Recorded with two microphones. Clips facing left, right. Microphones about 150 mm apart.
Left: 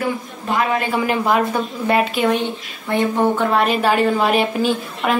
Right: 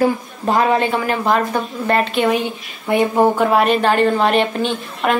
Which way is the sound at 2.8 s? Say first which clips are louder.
Right 3 dB; 15° right (ahead or behind).